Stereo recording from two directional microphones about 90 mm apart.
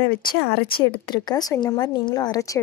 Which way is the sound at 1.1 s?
50° left (ahead or behind).